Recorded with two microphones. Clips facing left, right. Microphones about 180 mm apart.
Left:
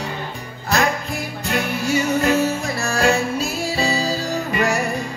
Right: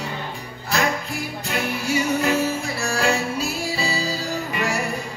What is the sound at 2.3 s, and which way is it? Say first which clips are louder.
Music: left 3 dB; 45° left (ahead or behind).